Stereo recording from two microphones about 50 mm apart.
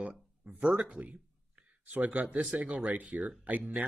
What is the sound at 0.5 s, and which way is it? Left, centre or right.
Speech, right.